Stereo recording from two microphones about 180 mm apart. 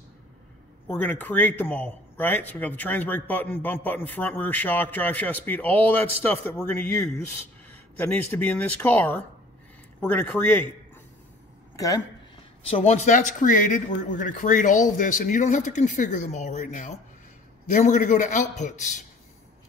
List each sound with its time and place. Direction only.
0.8 s a man's voice: 10° left (ahead or behind)
11.7 s speech: 20° left (ahead or behind)
12.6 s speech: 35° left (ahead or behind)